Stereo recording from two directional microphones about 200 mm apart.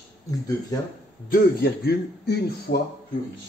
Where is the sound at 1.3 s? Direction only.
50° left (ahead or behind).